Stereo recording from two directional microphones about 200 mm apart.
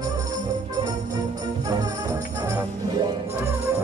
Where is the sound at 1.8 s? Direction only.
15° right (ahead or behind).